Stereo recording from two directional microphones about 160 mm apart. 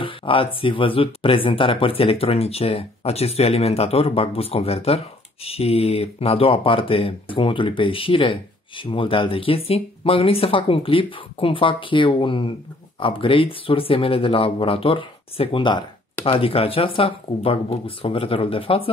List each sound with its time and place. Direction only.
0.0 s speech: 35° left (ahead or behind)